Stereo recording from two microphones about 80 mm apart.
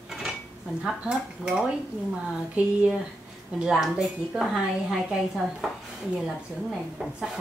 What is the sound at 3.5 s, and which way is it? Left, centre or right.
Dishes, centre.